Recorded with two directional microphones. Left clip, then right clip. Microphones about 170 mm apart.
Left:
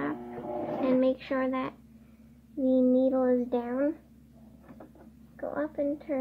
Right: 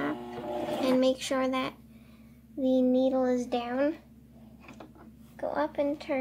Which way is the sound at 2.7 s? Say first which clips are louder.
Left 1 dB; 35° left (ahead or behind).